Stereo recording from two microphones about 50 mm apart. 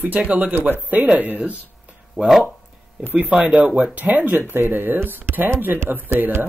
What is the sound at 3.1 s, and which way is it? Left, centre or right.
Speech, right.